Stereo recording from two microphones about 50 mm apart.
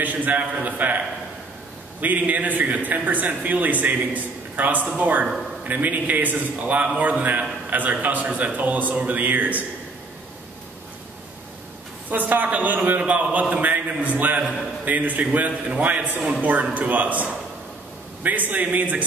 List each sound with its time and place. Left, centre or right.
0.0 s a man's voice: right
12.1 s a man's voice: right